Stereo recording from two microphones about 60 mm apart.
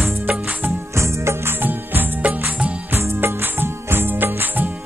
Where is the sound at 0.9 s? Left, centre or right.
Right.